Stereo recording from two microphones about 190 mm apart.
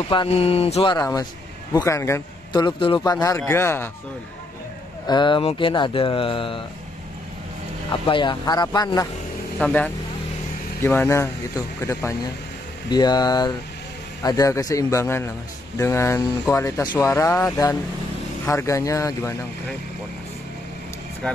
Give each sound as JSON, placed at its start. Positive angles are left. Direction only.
{"t": 0.1, "sound": "mantra", "side_deg": 30}
{"t": 0.9, "sound": "a man's voice", "side_deg": 20}
{"t": 5.0, "sound": "speech", "side_deg": 25}
{"t": 8.1, "sound": "speech", "side_deg": 25}
{"t": 9.6, "sound": "a man's voice", "side_deg": 5}